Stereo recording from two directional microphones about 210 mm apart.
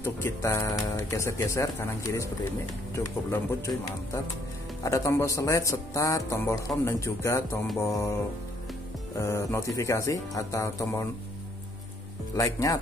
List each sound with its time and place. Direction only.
0.0 s speech: 10° left (ahead or behind)
4.8 s speech: 15° left (ahead or behind)
12.4 s speech: 15° left (ahead or behind)